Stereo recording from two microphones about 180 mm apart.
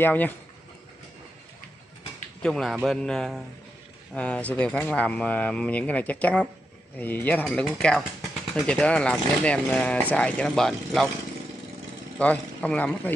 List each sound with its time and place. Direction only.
0.0 s speech: 10° left (ahead or behind)
2.4 s a man's voice: centre (ahead or behind)
12.2 s speech: 10° left (ahead or behind)